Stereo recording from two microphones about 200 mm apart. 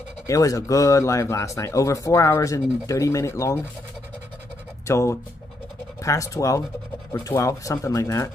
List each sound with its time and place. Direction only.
0.3 s speech: 15° left (ahead or behind)
4.8 s speech: 15° left (ahead or behind)